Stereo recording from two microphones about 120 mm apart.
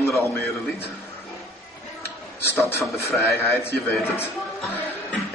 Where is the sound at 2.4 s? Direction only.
20° left (ahead or behind).